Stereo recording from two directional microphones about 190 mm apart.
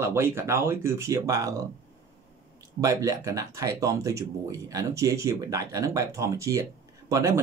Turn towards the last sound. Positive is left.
turn(degrees=-15)  # may be behind; listen again after turning